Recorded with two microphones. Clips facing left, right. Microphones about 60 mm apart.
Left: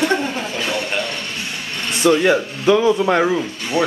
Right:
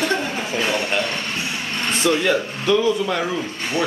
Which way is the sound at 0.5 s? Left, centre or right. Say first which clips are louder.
Right 4 dB; right.